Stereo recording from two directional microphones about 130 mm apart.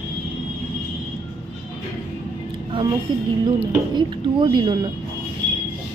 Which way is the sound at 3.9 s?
40° right (ahead or behind).